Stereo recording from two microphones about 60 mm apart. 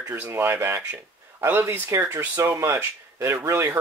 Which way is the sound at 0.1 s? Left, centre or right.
Right.